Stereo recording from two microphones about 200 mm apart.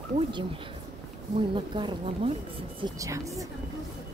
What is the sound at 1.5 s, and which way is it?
Speech, 25° right (ahead or behind).